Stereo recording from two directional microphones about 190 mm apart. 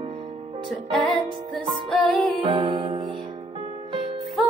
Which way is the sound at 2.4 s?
25° right (ahead or behind).